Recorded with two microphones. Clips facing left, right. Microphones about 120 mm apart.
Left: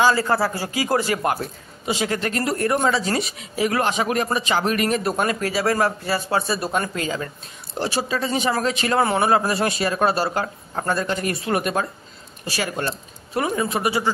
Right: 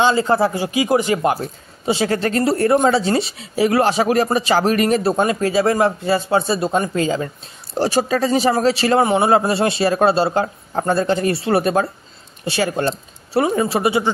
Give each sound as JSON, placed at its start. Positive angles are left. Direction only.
{"t": 0.0, "sound": "speech", "side_deg": -20}
{"t": 1.9, "sound": "speech", "side_deg": -35}
{"t": 7.7, "sound": "speech", "side_deg": -40}
{"t": 9.0, "sound": "speech", "side_deg": -25}